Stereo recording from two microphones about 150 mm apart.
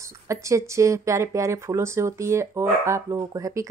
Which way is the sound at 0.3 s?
20° right (ahead or behind).